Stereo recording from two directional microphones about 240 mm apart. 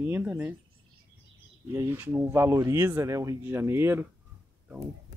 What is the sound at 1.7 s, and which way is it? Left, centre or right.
Speech, centre.